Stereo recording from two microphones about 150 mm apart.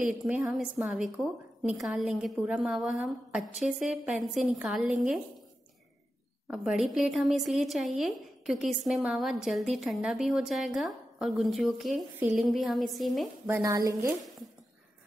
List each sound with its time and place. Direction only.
0.0 s speech: 5° right (ahead or behind)
6.4 s speech: 5° right (ahead or behind)
13.5 s a woman's voice: 20° right (ahead or behind)